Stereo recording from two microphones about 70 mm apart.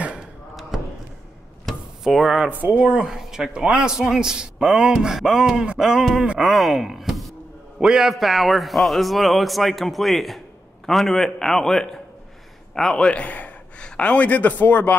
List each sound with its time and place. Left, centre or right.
0.0 s a sound: centre
1.7 s drawer open or close: centre
2.5 s a man's voice: centre
6.5 s a man's voice: centre; by 15.0 s left